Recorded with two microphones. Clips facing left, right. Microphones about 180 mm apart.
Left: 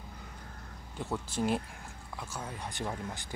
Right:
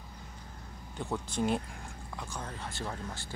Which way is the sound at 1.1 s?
5° left (ahead or behind).